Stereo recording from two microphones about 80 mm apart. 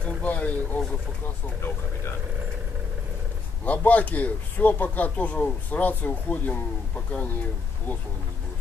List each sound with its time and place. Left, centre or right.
0.0 s a sound: centre
1.2 s speech: left
3.6 s speech: centre